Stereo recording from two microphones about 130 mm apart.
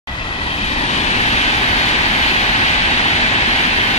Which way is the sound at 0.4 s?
50° left (ahead or behind).